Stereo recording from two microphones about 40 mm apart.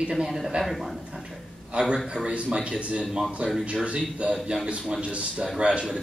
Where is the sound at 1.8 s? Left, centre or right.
Right.